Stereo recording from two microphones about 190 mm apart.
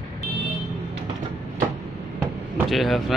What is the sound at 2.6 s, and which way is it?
Speech, centre (ahead or behind).